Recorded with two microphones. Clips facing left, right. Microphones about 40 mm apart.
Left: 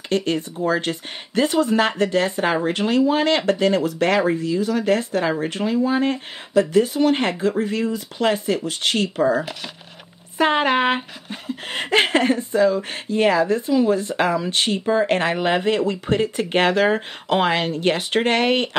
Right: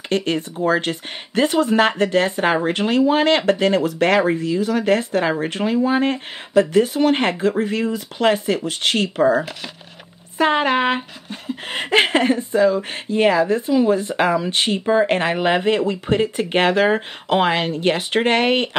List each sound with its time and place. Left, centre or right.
0.1 s speech: right
10.3 s speech: centre
11.6 s speech: centre